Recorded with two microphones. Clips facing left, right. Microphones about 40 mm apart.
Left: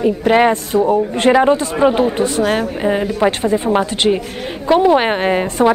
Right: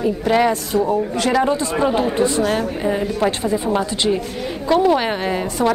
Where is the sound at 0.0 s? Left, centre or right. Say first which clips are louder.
Left 4 dB; left.